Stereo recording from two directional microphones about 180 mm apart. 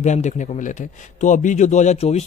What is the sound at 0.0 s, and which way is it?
A man's voice, 40° left (ahead or behind).